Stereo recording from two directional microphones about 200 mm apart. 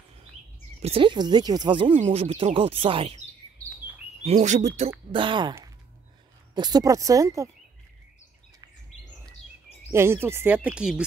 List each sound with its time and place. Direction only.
0.8 s speech: 25° right (ahead or behind)
4.2 s speech: 35° right (ahead or behind)
6.5 s speech: 20° right (ahead or behind)
9.8 s speech: 15° right (ahead or behind)